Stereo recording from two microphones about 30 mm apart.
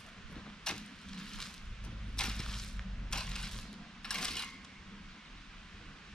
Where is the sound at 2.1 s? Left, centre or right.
Left.